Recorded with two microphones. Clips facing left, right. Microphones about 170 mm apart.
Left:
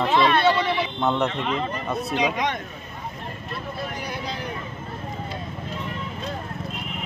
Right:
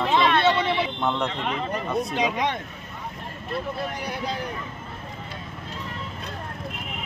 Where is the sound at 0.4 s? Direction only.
25° right (ahead or behind).